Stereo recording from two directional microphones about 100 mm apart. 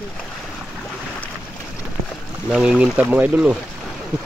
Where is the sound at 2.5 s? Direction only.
5° right (ahead or behind).